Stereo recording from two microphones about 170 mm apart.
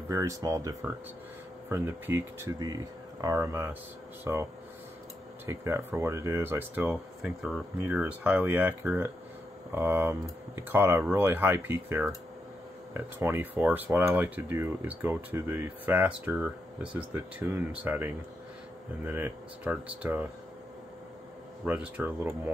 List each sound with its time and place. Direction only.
0.1 s speech: 20° right (ahead or behind)
5.5 s speech: 15° right (ahead or behind)
21.6 s speech: 10° right (ahead or behind)